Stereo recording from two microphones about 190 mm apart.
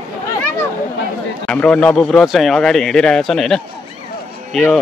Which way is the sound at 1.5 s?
5° left (ahead or behind).